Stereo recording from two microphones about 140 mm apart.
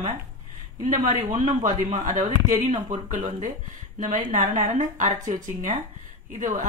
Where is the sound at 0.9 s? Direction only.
60° right (ahead or behind).